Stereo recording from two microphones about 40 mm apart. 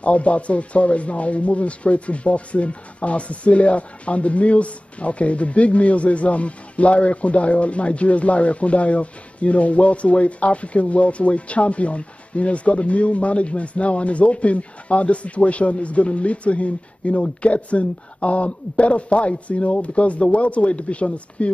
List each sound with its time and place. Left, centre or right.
0.0 s speech: left